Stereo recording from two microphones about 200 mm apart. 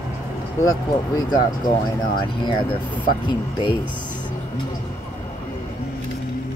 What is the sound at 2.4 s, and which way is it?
Speech, 20° left (ahead or behind).